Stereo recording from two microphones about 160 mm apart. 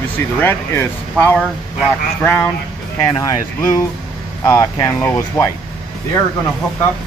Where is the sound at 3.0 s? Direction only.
20° left (ahead or behind).